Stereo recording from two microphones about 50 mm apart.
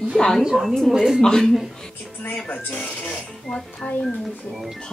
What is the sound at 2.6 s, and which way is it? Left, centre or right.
Speech, left.